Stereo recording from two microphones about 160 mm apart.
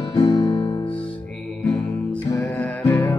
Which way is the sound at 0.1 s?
25° left (ahead or behind).